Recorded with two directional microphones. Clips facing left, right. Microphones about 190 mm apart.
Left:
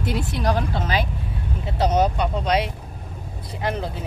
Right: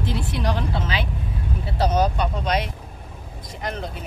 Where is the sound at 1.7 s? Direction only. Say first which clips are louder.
Left 1 dB; 20° left (ahead or behind).